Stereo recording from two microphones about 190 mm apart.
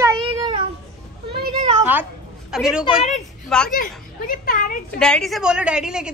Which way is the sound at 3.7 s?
45° left (ahead or behind).